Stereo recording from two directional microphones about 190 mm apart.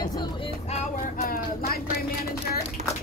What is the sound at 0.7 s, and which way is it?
Speech, 35° left (ahead or behind).